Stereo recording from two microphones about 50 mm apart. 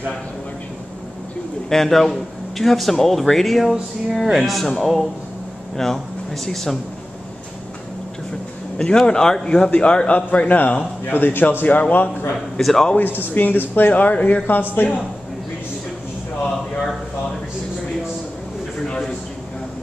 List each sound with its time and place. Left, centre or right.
1.7 s speech: centre
8.7 s speech: centre
11.1 s speech: left
12.5 s speech: centre
13.2 s speech: left